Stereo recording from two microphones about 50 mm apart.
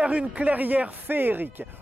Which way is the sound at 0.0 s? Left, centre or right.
Right.